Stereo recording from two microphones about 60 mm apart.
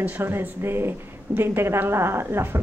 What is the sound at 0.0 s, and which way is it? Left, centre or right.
A woman's voice, right.